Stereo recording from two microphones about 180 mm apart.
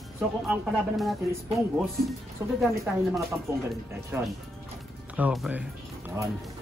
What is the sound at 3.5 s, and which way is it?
A man's voice, 15° right (ahead or behind).